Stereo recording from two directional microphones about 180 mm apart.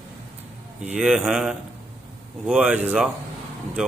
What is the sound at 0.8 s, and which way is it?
Speech, 5° right (ahead or behind).